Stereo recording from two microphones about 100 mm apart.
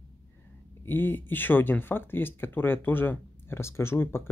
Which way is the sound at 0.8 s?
20° left (ahead or behind).